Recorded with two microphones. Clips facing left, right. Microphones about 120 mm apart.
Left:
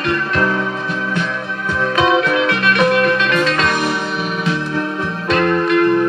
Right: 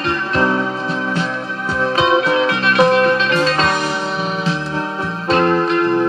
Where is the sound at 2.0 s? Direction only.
30° right (ahead or behind).